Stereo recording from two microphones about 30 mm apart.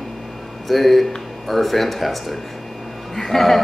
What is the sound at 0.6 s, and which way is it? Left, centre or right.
A man's voice, centre.